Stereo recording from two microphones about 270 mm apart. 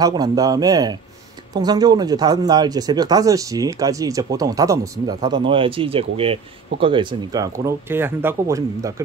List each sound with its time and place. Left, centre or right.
0.0 s speech: centre